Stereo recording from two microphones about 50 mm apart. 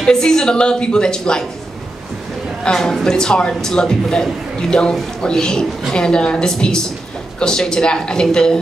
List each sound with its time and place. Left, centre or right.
0.0 s speech: centre
2.6 s speech: centre